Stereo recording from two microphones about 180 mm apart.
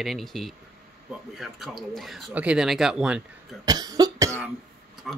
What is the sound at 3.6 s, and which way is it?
Cough, 20° right (ahead or behind).